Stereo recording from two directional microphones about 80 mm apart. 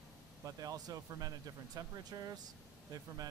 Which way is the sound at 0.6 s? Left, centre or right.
Right.